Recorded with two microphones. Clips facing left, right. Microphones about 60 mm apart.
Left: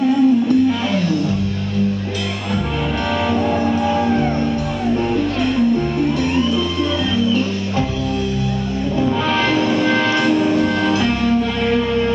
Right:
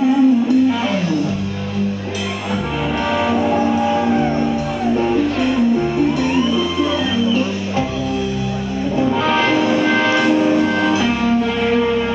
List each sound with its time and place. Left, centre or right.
0.0 s music: centre
3.3 s music: centre
8.9 s music: centre